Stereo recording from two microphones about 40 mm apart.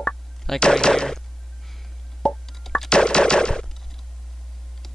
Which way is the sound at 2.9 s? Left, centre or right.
Left.